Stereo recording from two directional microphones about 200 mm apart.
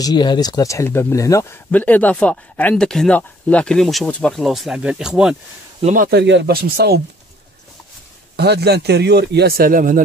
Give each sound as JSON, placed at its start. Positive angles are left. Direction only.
{"t": 0.0, "sound": "speech", "side_deg": 20}
{"t": 5.8, "sound": "speech", "side_deg": -35}
{"t": 6.0, "sound": "speech", "side_deg": -60}
{"t": 8.4, "sound": "speech", "side_deg": -55}